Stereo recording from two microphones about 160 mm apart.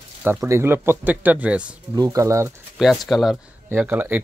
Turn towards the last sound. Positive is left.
turn(degrees=-10)  # may be behind; listen again after turning